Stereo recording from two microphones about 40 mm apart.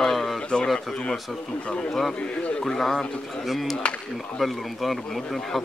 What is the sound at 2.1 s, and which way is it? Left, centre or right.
Speech, left.